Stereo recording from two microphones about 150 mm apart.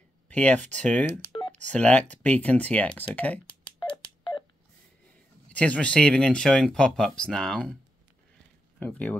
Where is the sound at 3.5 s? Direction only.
35° left (ahead or behind).